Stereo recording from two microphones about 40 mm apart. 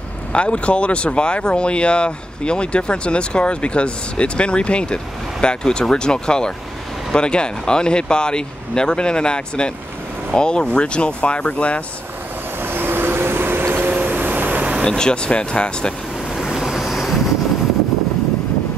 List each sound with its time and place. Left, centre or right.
0.3 s speech: left
12.6 s vehicle: right
14.8 s speech: centre
16.3 s vehicle: centre